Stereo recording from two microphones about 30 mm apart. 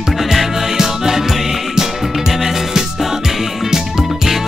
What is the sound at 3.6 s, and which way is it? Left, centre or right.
Music, centre.